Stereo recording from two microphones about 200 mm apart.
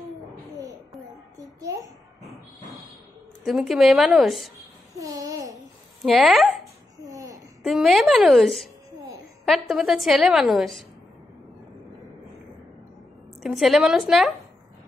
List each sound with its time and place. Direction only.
1.4 s a sound: 15° right (ahead or behind)
3.4 s a woman's voice: centre (ahead or behind)
4.9 s babbling: 15° right (ahead or behind)
6.0 s a woman's voice: centre (ahead or behind)
6.6 s a sound: 15° right (ahead or behind)
7.6 s a woman's voice: centre (ahead or behind)
13.4 s a woman's voice: centre (ahead or behind)